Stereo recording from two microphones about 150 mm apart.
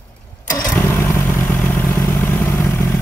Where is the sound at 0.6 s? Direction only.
20° left (ahead or behind).